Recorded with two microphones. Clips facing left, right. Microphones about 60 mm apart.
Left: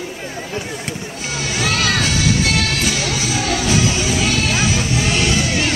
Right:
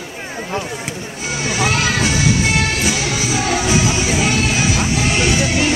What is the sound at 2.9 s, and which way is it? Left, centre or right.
Music, centre.